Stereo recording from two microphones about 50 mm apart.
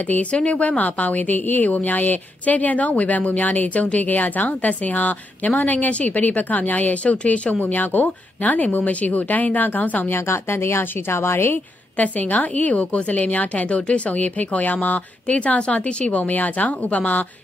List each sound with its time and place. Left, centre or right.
0.1 s a woman's voice: left
10.0 s speech: left
12.0 s a woman's voice: left